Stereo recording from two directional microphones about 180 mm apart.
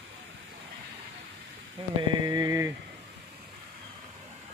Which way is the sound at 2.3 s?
20° right (ahead or behind).